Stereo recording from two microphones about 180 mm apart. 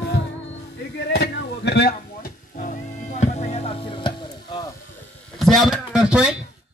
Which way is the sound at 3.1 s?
40° left (ahead or behind).